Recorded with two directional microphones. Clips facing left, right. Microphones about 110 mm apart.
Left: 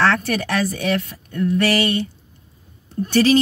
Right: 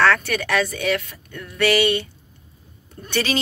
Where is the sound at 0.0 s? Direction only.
35° left (ahead or behind).